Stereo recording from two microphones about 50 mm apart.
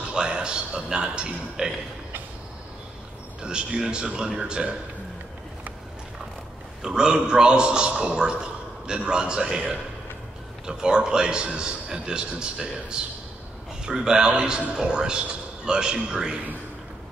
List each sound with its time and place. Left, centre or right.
0.1 s a man's voice: centre
3.4 s a man's voice: centre
6.8 s a man's voice: centre